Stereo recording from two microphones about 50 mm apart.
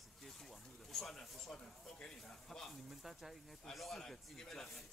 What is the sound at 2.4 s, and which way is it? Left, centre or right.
Speech, centre.